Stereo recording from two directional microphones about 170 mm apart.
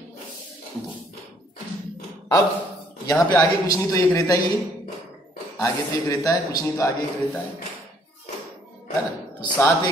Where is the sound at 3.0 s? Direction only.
20° left (ahead or behind).